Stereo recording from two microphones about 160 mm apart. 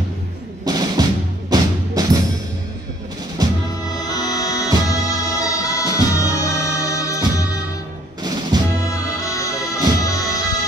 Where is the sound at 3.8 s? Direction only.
25° left (ahead or behind).